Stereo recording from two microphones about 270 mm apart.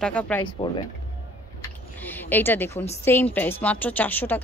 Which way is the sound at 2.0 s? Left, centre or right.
Centre.